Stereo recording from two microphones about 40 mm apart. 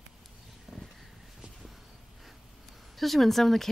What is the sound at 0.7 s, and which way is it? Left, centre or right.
Vehicle, centre.